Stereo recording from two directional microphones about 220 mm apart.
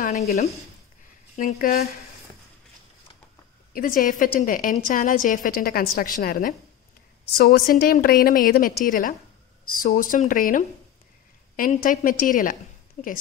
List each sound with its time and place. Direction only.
0.0 s a woman's voice: 35° left (ahead or behind)
3.7 s a woman's voice: 40° left (ahead or behind)